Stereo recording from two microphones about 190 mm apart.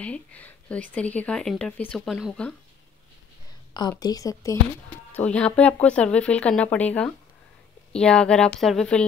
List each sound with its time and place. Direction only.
0.0 s speech: 5° left (ahead or behind)
4.0 s speech: 20° left (ahead or behind)
5.1 s speech: 5° left (ahead or behind)